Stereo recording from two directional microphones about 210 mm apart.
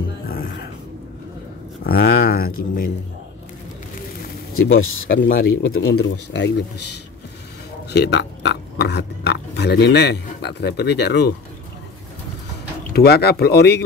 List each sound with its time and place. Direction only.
1.9 s a sound: 50° left (ahead or behind)
4.6 s speech: 80° left
5.0 s speech: 45° left (ahead or behind)
5.4 s speech: 75° left (ahead or behind)
6.1 s speech: 60° left (ahead or behind)
12.9 s speech: 50° left (ahead or behind)